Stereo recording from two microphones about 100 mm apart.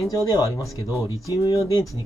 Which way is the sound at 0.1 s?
35° left (ahead or behind).